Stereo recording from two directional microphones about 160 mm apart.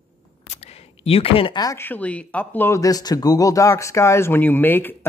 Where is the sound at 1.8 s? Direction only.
10° left (ahead or behind).